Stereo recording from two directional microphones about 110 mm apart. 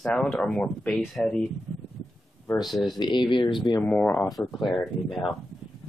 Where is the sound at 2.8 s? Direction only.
40° left (ahead or behind).